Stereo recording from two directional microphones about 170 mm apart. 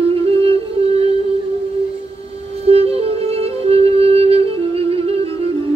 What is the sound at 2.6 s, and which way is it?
Music, 35° right (ahead or behind).